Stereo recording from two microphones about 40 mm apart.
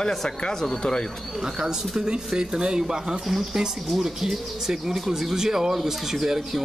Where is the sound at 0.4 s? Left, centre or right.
Centre.